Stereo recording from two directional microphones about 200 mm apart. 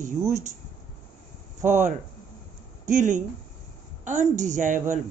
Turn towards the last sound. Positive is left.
turn(degrees=-40)  # may be behind; listen again after turning